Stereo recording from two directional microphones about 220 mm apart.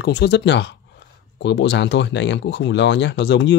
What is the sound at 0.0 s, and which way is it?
Speech, 50° left (ahead or behind).